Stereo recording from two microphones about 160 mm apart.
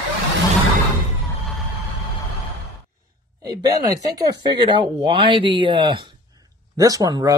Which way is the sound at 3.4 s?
25° right (ahead or behind).